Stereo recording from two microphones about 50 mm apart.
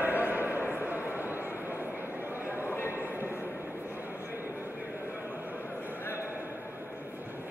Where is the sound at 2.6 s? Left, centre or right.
Left.